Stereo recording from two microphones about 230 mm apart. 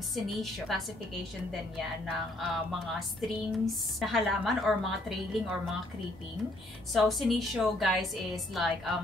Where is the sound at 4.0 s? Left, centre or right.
Centre.